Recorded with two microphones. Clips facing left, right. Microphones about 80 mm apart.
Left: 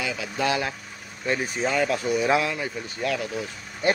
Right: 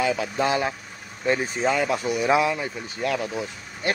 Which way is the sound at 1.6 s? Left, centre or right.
Centre.